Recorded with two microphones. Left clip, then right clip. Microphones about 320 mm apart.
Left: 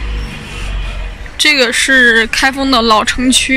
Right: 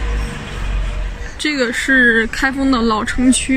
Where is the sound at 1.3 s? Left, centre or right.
Centre.